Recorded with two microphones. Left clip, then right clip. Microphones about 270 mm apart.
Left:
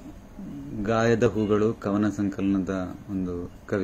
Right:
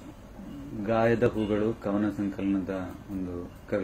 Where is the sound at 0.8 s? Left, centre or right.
Left.